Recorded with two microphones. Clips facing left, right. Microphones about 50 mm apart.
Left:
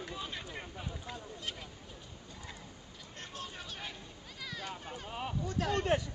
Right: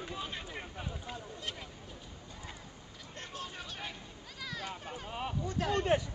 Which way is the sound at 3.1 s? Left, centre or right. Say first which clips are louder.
Right 2 dB; centre.